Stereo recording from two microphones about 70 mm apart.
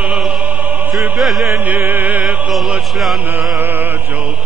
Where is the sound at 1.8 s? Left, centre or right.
Right.